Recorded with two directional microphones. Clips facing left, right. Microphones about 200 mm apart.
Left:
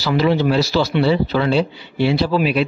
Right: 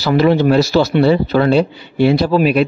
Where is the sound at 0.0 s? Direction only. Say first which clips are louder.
Right 4 dB; 50° right (ahead or behind).